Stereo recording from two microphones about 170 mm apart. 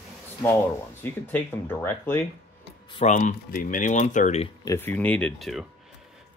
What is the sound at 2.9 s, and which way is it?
Speech, 40° left (ahead or behind).